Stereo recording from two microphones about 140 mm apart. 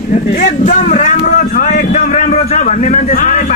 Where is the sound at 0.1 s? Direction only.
65° left (ahead or behind).